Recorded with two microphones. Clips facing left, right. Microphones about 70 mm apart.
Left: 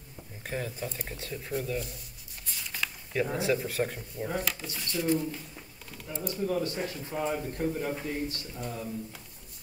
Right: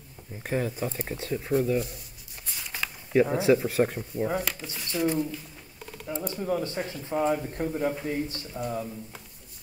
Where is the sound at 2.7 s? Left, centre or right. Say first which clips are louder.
Right 4 dB; right.